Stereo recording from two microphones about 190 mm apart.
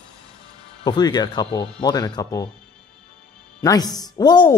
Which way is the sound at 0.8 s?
20° left (ahead or behind).